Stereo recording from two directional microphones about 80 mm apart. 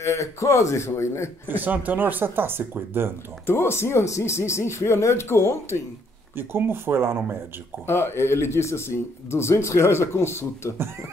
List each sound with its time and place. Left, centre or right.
0.0 s speech: left
1.5 s speech: right
3.4 s speech: left
6.3 s speech: right
7.8 s speech: left